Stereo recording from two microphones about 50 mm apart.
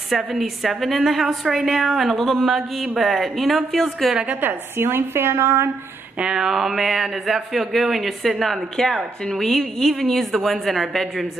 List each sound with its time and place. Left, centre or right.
0.1 s speech: centre
4.3 s a woman's voice: right
6.1 s speech: centre